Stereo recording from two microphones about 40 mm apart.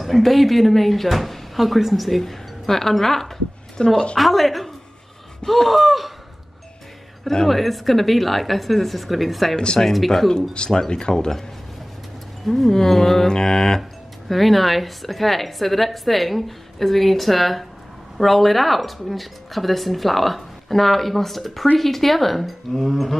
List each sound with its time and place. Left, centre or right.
0.0 s speech: centre
3.7 s a woman's voice: left
4.2 s speech: centre
7.4 s speech: centre
10.7 s speech: centre
12.4 s speech: centre